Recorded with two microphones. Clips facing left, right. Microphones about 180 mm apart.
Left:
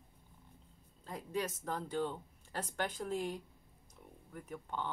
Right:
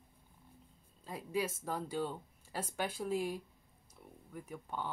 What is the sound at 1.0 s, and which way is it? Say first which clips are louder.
Speech: right 2 dB; 10° right (ahead or behind).